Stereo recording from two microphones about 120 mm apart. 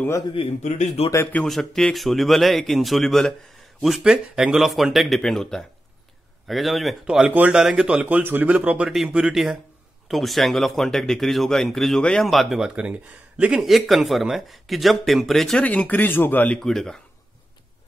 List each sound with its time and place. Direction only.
0.3 s a man's voice: 65° left (ahead or behind)
1.1 s a man's voice: 15° left (ahead or behind)
1.5 s a man's voice: centre (ahead or behind)
16.5 s a man's voice: 5° left (ahead or behind)